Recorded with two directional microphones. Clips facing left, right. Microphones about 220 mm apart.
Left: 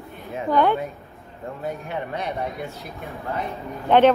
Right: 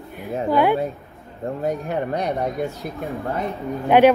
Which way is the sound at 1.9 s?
40° right (ahead or behind).